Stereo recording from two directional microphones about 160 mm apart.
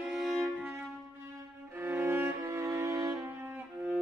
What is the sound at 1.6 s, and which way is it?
Cello, 15° right (ahead or behind).